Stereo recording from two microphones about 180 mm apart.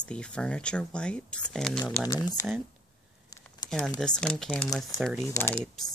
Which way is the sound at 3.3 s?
20° left (ahead or behind).